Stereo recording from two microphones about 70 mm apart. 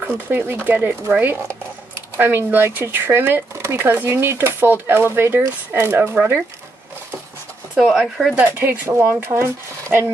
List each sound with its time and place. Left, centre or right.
0.0 s speech: right
2.1 s speech: right
7.7 s speech: centre
8.5 s speech: right